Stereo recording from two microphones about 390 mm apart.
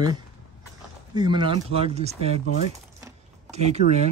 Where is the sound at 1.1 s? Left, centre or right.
Centre.